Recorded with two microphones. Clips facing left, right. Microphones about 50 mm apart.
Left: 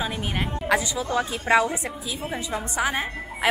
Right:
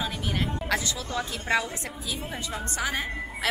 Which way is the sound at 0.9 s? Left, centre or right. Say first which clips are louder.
Left 6 dB; centre.